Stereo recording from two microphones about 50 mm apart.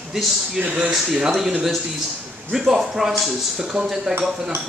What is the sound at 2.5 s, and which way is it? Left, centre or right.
Speech, centre.